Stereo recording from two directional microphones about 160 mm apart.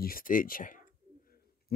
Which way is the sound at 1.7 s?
75° left (ahead or behind).